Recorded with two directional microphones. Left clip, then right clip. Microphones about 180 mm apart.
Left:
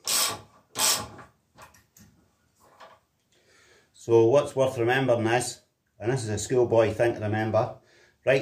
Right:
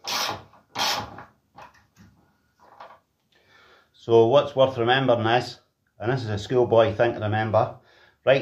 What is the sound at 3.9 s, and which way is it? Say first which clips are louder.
Speech: right 3 dB; 25° left (ahead or behind).